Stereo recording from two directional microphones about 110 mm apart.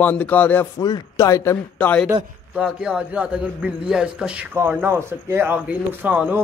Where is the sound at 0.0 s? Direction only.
15° left (ahead or behind).